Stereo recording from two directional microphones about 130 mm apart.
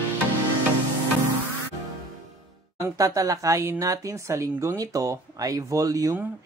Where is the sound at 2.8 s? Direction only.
25° right (ahead or behind).